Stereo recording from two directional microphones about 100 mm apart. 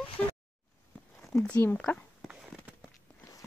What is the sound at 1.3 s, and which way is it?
Speech, 30° left (ahead or behind).